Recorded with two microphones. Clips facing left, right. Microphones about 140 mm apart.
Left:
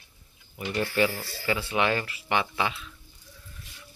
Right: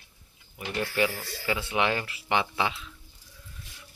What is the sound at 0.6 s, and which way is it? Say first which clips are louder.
Speech: left 2 dB; 10° right (ahead or behind).